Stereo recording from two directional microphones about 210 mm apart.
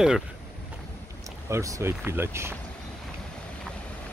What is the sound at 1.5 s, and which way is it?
Speech, 15° right (ahead or behind).